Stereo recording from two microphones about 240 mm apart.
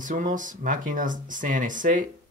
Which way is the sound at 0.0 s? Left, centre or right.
Right.